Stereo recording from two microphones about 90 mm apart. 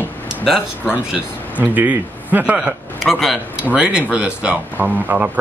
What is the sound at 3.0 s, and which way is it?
A man's voice, centre (ahead or behind).